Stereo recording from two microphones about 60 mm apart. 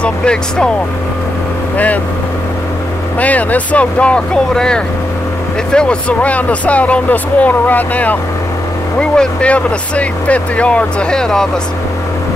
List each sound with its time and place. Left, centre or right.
0.0 s speech: centre
3.2 s speech: left
9.1 s speech: centre